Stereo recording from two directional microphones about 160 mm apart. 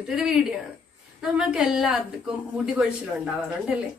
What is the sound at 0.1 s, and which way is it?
Speech, 5° right (ahead or behind).